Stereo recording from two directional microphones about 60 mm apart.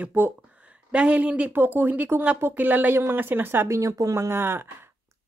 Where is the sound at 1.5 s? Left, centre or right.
Right.